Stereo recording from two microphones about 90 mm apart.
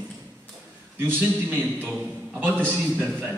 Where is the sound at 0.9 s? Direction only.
25° right (ahead or behind).